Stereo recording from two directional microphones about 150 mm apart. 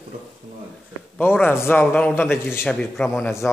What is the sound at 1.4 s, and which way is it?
A man's voice, 15° left (ahead or behind).